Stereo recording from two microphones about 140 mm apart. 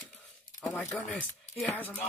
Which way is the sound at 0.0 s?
5° left (ahead or behind).